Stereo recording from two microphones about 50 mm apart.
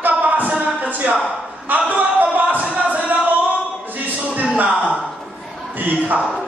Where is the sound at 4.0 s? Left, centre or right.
Right.